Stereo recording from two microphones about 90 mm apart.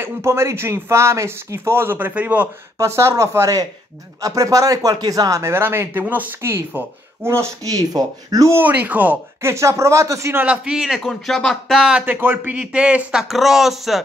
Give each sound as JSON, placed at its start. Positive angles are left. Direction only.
{"t": 0.0, "sound": "speech", "side_deg": -30}
{"t": 2.8, "sound": "speech", "side_deg": -30}
{"t": 5.4, "sound": "speech", "side_deg": -25}
{"t": 8.5, "sound": "speech", "side_deg": -20}
{"t": 10.3, "sound": "a man's voice", "side_deg": -15}